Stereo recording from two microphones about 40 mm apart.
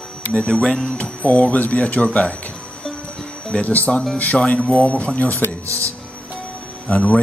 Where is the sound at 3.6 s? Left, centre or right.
Left.